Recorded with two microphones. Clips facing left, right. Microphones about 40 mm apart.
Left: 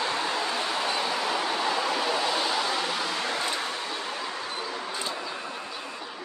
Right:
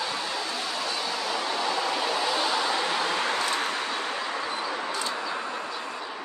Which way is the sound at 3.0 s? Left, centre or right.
Right.